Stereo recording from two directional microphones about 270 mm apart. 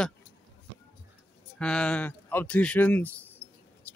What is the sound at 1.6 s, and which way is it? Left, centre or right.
Speech, centre.